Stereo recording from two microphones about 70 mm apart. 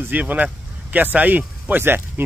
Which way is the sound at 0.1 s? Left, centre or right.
Right.